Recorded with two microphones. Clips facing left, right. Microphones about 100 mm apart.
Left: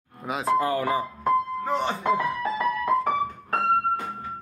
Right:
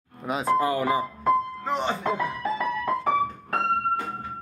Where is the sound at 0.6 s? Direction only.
15° right (ahead or behind).